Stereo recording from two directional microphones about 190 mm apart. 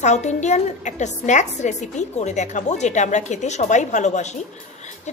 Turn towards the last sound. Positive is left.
turn(degrees=35)  # may be behind; listen again after turning